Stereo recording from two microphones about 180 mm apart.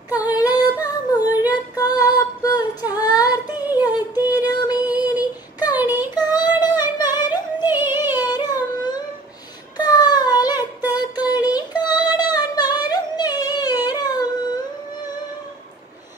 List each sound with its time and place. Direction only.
0.3 s female singing: 20° left (ahead or behind)
3.7 s a sound: 20° left (ahead or behind)
4.3 s music: 20° left (ahead or behind)
5.0 s a sound: 20° left (ahead or behind)
6.1 s child singing: 25° left (ahead or behind)
6.6 s singing: 25° left (ahead or behind)
7.2 s music: 25° left (ahead or behind)
7.6 s music: 10° right (ahead or behind)
8.3 s a sound: 25° left (ahead or behind)
9.8 s child singing: 25° left (ahead or behind)
11.8 s music: 25° left (ahead or behind)